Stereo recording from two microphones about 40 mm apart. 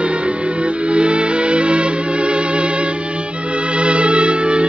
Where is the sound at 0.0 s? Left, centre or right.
Right.